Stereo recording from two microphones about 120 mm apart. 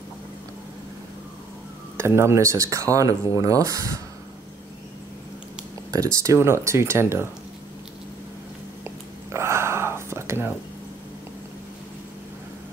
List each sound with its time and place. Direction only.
2.0 s speech: 20° right (ahead or behind)
5.9 s speech: 30° right (ahead or behind)
9.3 s whispering: 20° right (ahead or behind)